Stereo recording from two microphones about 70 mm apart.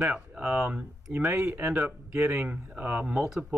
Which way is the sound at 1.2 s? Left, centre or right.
Right.